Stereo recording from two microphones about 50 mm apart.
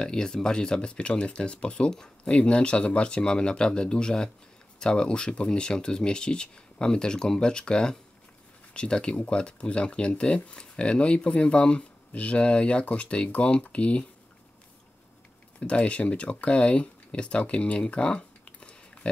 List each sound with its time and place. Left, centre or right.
0.0 s speech: centre
9.1 s speech: left
15.6 s speech: left